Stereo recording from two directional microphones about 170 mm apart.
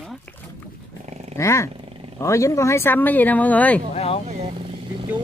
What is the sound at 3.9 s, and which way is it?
Speech, 40° left (ahead or behind).